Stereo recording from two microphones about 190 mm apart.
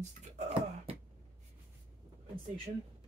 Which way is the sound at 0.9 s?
30° right (ahead or behind).